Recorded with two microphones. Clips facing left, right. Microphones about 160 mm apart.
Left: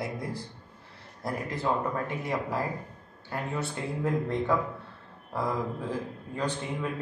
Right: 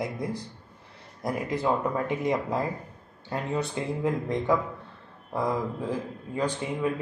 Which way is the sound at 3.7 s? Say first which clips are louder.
Right 2 dB; 15° right (ahead or behind).